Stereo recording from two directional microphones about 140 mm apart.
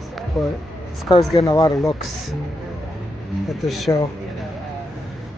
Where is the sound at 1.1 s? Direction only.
35° left (ahead or behind).